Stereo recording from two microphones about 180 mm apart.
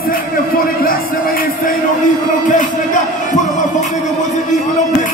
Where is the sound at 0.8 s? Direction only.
55° left (ahead or behind).